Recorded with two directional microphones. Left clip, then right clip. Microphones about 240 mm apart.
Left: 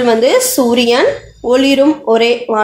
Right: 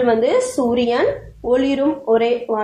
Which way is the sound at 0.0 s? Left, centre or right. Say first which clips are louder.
Left 5 dB; left.